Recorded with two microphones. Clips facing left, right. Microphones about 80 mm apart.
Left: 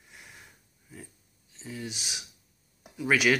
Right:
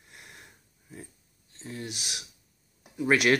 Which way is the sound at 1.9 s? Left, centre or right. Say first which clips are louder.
Even; right.